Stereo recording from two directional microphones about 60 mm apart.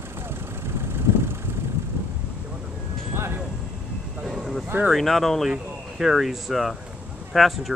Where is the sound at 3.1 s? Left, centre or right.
Right.